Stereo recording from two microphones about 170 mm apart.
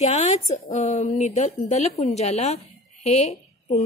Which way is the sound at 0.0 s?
40° left (ahead or behind).